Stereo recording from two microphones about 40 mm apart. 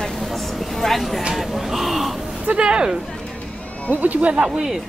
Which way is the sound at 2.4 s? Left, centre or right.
Right.